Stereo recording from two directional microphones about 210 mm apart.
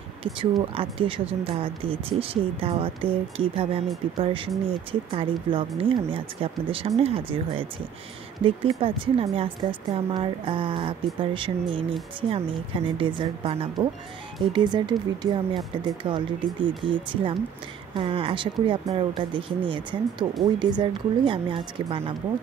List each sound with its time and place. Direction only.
0.2 s speech: 25° right (ahead or behind)